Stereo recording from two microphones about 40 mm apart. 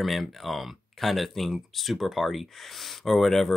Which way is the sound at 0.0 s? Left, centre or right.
Centre.